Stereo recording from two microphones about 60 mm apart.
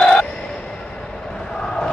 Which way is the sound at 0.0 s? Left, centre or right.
Centre.